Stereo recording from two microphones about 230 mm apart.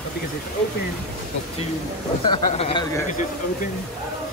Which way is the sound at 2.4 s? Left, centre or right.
Left.